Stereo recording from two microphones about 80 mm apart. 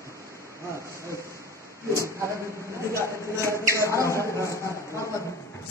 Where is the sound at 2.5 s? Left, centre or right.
Left.